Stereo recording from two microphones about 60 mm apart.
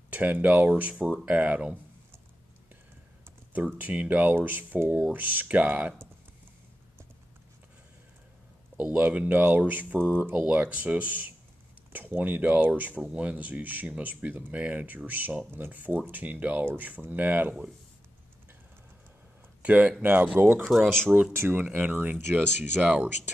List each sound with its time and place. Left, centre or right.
0.1 s speech: right
3.5 s speech: right
8.7 s speech: right
19.6 s speech: right
20.0 s speech: right
20.6 s speech: centre
21.4 s speech: right
21.6 s speech: right